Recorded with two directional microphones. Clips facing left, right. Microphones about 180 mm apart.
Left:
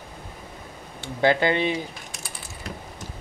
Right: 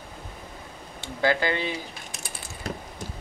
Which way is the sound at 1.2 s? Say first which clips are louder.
Left 4 dB; 20° left (ahead or behind).